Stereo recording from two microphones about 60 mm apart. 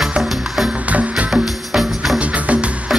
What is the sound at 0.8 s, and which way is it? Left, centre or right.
Music, right.